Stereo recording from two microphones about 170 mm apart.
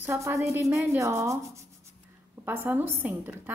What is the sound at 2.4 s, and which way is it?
A woman's voice, 15° right (ahead or behind).